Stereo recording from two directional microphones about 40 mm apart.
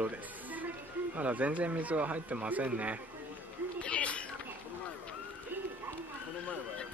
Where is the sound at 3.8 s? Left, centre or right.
Left.